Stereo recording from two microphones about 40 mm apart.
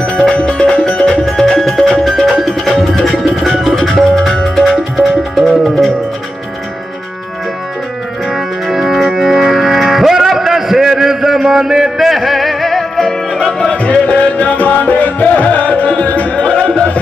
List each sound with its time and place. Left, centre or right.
0.5 s music: left
1.1 s music: centre
8.3 s music: centre
13.3 s music: centre
13.7 s music: left
16.3 s music: left